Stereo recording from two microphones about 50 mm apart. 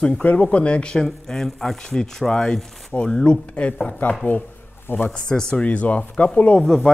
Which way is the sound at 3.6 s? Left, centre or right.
Left.